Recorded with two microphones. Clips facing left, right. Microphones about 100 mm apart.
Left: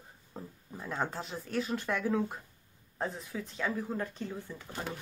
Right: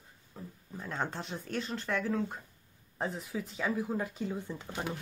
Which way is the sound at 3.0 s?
5° right (ahead or behind).